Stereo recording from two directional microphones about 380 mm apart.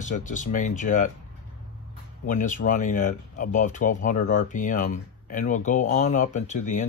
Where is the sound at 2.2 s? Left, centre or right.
Left.